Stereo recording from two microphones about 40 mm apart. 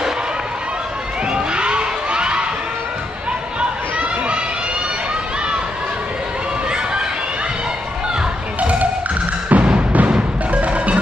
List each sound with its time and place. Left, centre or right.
1.3 s crowd: right
8.5 s music: right